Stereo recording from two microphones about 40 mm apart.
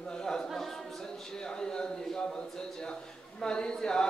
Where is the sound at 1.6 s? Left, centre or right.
Centre.